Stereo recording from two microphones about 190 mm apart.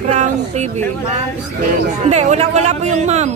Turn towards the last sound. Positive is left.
turn(degrees=-35)  # may be behind; listen again after turning